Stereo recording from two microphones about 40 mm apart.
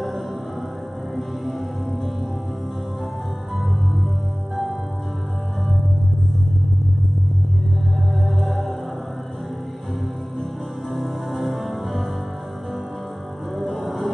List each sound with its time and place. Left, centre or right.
1.1 s music: centre
8.3 s music: centre
10.9 s music: centre
13.6 s music: centre